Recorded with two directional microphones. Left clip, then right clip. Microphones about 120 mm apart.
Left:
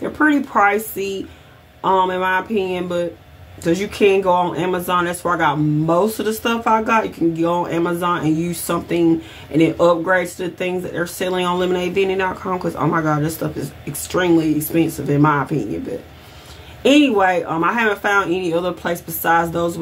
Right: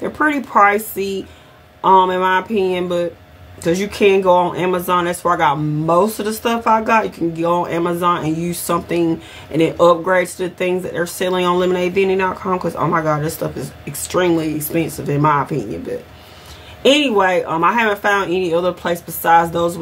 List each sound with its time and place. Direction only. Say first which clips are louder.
0.0 s speech: left 1 dB; 20° right (ahead or behind)
16.8 s speech: right 1 dB; 20° right (ahead or behind)